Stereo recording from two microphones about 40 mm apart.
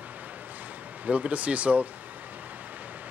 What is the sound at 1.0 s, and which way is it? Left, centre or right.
Speech, right.